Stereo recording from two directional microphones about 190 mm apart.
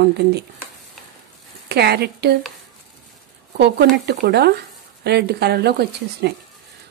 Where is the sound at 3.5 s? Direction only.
65° right (ahead or behind).